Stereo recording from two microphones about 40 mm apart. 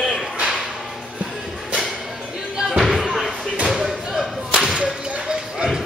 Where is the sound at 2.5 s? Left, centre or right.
Right.